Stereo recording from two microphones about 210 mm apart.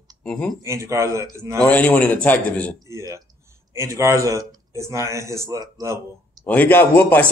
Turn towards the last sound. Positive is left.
turn(degrees=10)  # may be behind; listen again after turning